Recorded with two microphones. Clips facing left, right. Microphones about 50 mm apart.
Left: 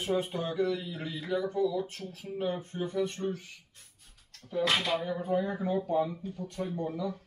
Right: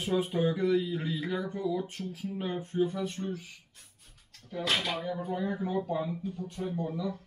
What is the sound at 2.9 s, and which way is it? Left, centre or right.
Speech, centre.